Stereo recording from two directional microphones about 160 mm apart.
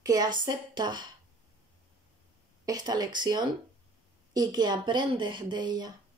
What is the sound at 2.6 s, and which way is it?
Speech, 25° right (ahead or behind).